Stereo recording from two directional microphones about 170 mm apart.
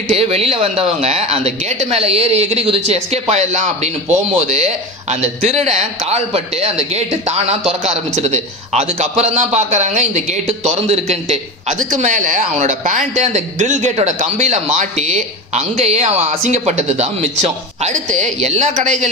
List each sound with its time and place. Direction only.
0.1 s a man's voice: 35° right (ahead or behind)